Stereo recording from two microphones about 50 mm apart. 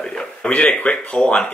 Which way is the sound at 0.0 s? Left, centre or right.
Centre.